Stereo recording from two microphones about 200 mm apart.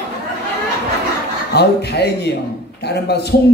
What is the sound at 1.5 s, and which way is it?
Speech, 55° left (ahead or behind).